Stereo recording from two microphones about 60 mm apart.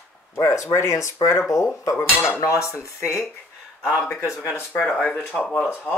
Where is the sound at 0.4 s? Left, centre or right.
Left.